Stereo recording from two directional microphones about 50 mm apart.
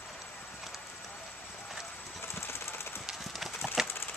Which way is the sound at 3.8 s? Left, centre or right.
Centre.